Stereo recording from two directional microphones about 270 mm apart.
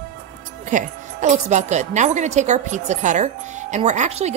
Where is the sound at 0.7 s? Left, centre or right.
Right.